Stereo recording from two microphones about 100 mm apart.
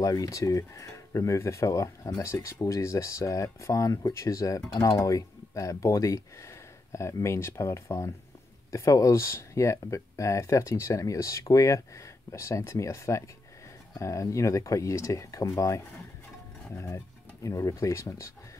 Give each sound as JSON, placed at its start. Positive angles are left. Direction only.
{"t": 0.0, "sound": "speech", "side_deg": 35}